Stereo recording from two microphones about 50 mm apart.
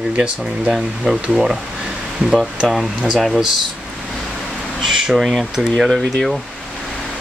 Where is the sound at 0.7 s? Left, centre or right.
Centre.